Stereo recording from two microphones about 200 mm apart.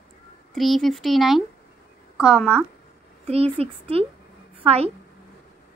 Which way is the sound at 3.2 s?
30° right (ahead or behind).